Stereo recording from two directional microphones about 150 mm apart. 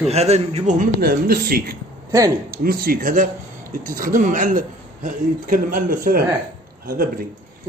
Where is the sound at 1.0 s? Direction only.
90° right; by 6.2 s 70° right (ahead or behind).